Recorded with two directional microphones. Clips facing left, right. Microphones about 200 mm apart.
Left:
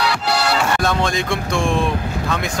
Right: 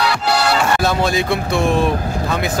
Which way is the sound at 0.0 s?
50° right (ahead or behind).